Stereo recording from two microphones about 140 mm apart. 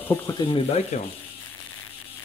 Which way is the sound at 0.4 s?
40° left (ahead or behind).